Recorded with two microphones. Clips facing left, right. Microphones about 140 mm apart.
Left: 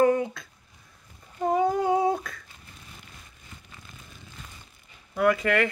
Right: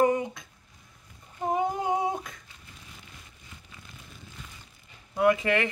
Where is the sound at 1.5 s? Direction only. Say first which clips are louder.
Left 4 dB; 20° right (ahead or behind).